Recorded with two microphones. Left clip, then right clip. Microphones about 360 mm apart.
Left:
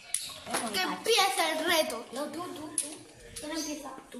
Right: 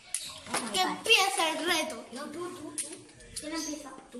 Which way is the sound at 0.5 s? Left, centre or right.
Centre.